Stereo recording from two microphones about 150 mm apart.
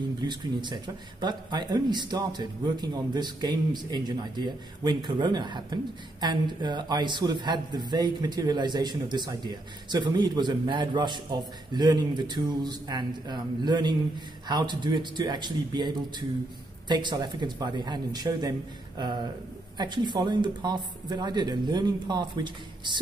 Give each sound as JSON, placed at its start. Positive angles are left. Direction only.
{"t": 0.2, "sound": "speech", "side_deg": -30}